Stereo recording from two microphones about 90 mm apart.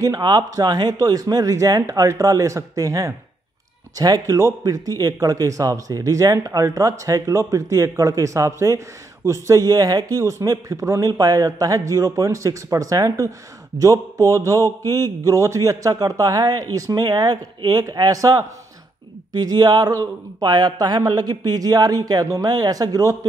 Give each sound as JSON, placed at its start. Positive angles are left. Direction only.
{"t": 0.0, "sound": "speech", "side_deg": -50}